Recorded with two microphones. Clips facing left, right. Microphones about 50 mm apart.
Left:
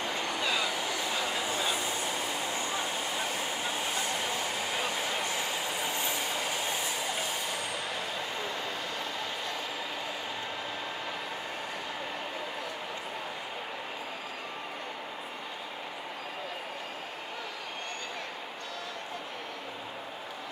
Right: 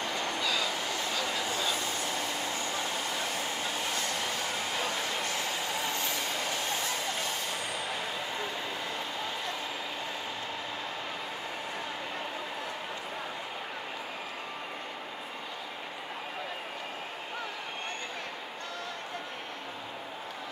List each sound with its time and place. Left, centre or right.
0.0 s train: centre
0.4 s vehicle: left